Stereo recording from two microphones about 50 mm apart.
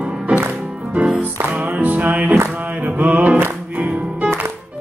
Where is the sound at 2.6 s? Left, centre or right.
Right.